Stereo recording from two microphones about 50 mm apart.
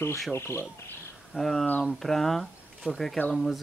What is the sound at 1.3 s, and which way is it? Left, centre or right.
Speech, centre.